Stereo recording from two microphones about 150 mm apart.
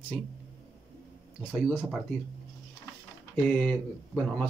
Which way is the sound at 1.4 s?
10° right (ahead or behind).